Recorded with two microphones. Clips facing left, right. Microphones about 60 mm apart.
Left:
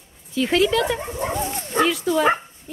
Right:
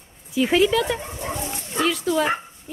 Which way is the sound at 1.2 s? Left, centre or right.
Left.